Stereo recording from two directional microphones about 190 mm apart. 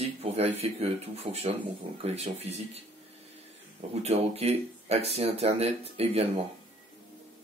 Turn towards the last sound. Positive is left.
turn(degrees=-30)  # may be behind; listen again after turning